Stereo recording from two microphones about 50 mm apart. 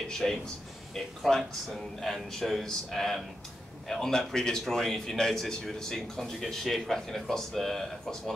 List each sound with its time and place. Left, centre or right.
0.1 s a man's voice: centre